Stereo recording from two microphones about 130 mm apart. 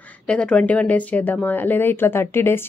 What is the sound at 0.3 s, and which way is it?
Speech, 10° left (ahead or behind).